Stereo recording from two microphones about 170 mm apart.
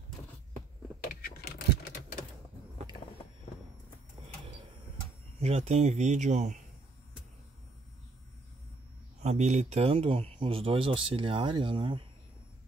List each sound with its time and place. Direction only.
1.0 s computer keyboard: 65° left (ahead or behind)
5.4 s speech: 40° right (ahead or behind)
9.2 s speech: 40° right (ahead or behind)